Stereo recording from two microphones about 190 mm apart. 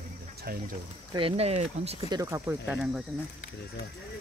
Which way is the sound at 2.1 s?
15° right (ahead or behind).